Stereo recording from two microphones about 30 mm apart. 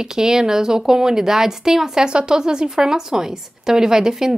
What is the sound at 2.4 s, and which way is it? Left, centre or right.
A woman's voice, right.